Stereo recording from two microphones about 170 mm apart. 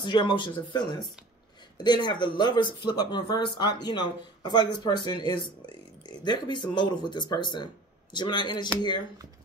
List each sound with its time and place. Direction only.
0.0 s speech: 25° left (ahead or behind)